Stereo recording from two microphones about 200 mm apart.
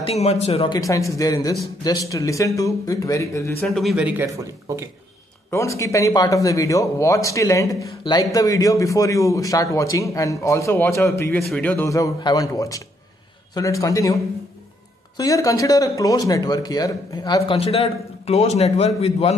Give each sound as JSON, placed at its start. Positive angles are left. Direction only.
{"t": 0.0, "sound": "speech", "side_deg": 30}
{"t": 3.6, "sound": "speech", "side_deg": 0}
{"t": 5.5, "sound": "speech", "side_deg": 15}
{"t": 17.4, "sound": "a man's voice", "side_deg": 30}